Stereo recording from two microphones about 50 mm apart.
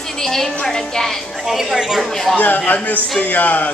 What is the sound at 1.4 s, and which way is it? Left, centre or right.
Speech, centre.